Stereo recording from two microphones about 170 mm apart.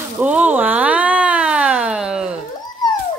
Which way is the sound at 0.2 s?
10° right (ahead or behind).